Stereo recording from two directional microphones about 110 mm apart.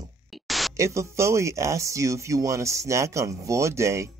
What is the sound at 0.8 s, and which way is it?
Speech, 25° right (ahead or behind).